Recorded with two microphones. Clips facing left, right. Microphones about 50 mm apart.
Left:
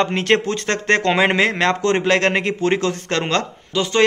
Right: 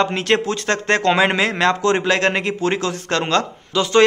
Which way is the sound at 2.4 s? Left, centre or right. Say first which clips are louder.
Left 2 dB; left.